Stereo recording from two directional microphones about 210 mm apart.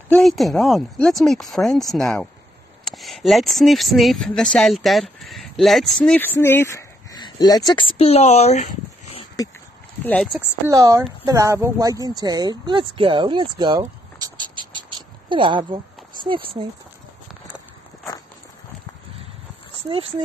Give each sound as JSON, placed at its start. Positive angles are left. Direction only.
{"t": 0.1, "sound": "speech", "side_deg": 0}
{"t": 10.0, "sound": "speech", "side_deg": 0}
{"t": 10.7, "sound": "speech", "side_deg": -15}
{"t": 19.8, "sound": "speech", "side_deg": -25}